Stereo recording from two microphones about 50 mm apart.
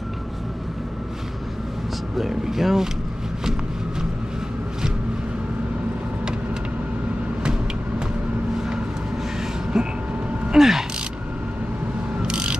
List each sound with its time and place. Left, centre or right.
2.1 s speech: centre
9.7 s vehicle: centre
10.5 s a sound: centre
12.2 s mechanisms: centre